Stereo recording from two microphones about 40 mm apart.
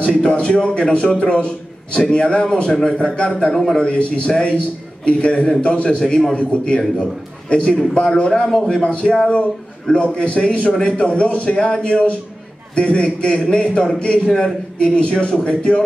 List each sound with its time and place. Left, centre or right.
0.0 s a man's voice: left
3.5 s a man's voice: centre
3.8 s a man's voice: left
5.9 s a man's voice: left